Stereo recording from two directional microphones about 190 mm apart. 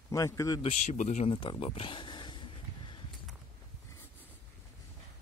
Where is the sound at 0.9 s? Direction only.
35° left (ahead or behind).